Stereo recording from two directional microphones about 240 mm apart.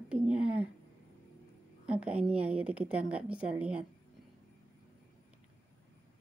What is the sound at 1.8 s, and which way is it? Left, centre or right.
A woman's voice, centre.